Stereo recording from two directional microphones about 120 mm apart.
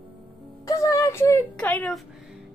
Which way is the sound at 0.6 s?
25° left (ahead or behind).